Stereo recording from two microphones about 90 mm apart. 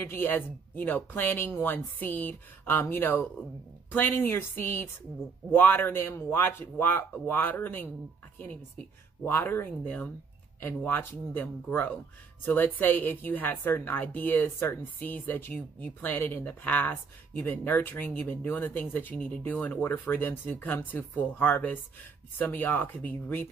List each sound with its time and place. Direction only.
0.1 s a woman's voice: 20° left (ahead or behind)
9.2 s a woman's voice: 25° left (ahead or behind)